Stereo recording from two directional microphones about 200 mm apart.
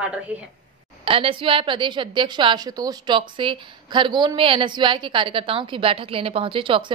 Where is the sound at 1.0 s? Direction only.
25° right (ahead or behind).